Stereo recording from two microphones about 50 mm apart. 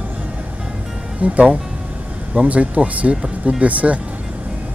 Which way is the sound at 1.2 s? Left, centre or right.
Right.